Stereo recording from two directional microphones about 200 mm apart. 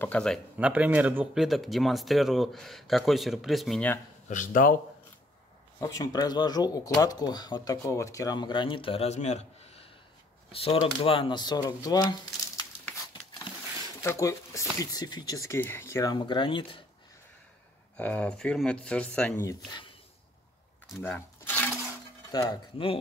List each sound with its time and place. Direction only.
0.0 s speech: 5° left (ahead or behind)
0.6 s speech: 5° right (ahead or behind)
4.3 s speech: 40° left (ahead or behind)
5.8 s speech: 15° left (ahead or behind)
14.0 s speech: 15° left (ahead or behind)
17.9 s speech: 5° left (ahead or behind)
20.9 s a sound: 10° left (ahead or behind)
22.3 s speech: 20° left (ahead or behind)